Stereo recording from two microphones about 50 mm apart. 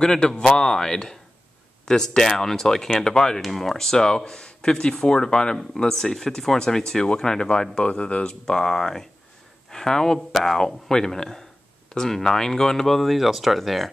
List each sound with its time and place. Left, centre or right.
0.0 s speech: centre